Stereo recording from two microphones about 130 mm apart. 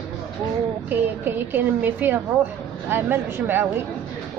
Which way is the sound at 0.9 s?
15° right (ahead or behind).